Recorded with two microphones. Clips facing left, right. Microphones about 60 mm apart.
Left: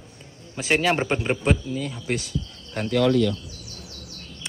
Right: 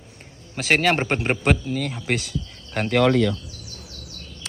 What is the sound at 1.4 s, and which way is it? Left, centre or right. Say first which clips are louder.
Speech: right 2 dB; right.